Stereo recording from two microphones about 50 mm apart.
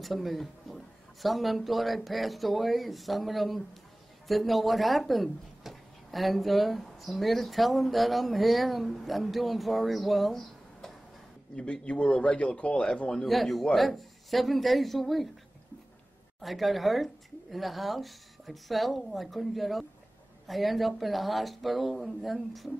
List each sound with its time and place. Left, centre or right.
0.0 s speech: centre
11.5 s a man's voice: left
13.2 s speech: centre
16.3 s speech: centre